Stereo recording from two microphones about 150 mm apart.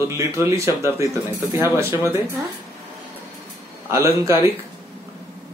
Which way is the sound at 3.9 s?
20° right (ahead or behind).